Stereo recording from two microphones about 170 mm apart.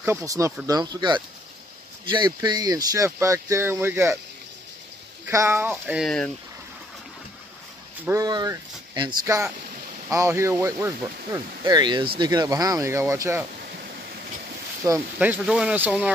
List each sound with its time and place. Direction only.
0.0 s speech: 15° right (ahead or behind)
5.3 s speech: 15° right (ahead or behind)
6.0 s speech: 5° left (ahead or behind)
8.0 s speech: 20° right (ahead or behind)
15.1 s speech: 10° right (ahead or behind)